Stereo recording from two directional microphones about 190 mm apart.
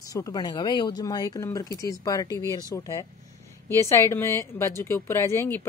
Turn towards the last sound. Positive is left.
turn(degrees=15)  # may be behind; listen again after turning